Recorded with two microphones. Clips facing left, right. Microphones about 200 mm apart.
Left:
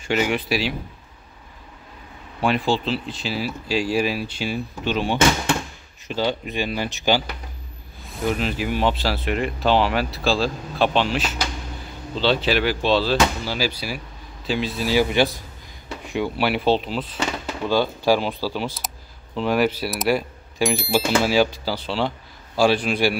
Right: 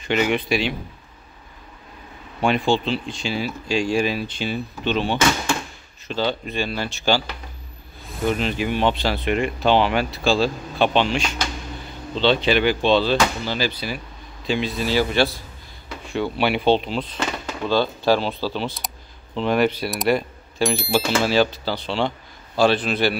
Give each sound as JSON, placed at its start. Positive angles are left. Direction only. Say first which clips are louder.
{"t": 0.0, "sound": "speech", "louder": "right 1 dB", "side_deg": 5}
{"t": 2.4, "sound": "speech", "louder": "right 1 dB", "side_deg": 0}
{"t": 8.1, "sound": "speech", "louder": "right 1 dB", "side_deg": 0}
{"t": 15.0, "sound": "speech", "louder": "left 1 dB", "side_deg": 15}
{"t": 16.3, "sound": "speech", "louder": "right 2 dB", "side_deg": 0}